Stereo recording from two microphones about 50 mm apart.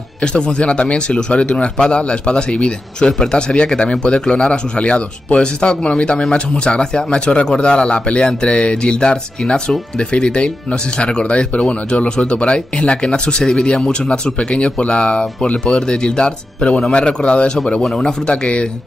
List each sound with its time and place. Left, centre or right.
0.2 s speech: centre
17.8 s speech: centre
18.2 s speech: centre